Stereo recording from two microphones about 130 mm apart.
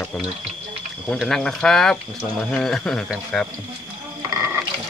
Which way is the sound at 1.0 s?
5° left (ahead or behind).